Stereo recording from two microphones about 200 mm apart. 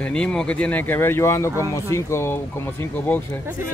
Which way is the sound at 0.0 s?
5° left (ahead or behind).